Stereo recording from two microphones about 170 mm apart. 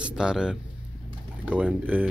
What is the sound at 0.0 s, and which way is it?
Speech, 5° right (ahead or behind).